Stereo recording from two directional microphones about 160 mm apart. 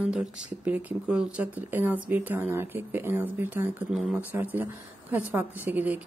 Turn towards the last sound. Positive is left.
turn(degrees=-10)  # may be behind; listen again after turning